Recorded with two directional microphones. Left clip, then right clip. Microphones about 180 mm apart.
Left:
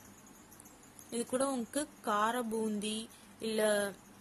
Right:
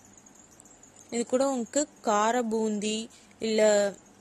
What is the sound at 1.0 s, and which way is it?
Speech, 35° right (ahead or behind).